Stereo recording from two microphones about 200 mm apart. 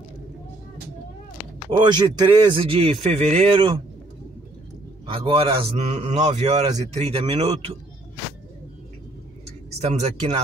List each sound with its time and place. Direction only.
1.7 s a man's voice: 20° right (ahead or behind)
5.0 s a man's voice: 25° right (ahead or behind)
9.8 s a man's voice: 30° right (ahead or behind)